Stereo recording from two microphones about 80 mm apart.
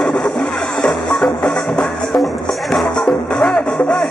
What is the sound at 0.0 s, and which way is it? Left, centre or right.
Music, centre.